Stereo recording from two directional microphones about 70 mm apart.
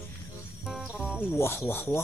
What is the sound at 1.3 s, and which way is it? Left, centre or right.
Speech, left.